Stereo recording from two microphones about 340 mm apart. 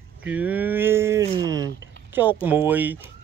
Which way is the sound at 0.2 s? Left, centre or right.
Centre.